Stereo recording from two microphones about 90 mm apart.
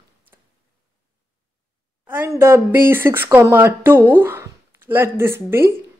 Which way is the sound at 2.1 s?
25° right (ahead or behind).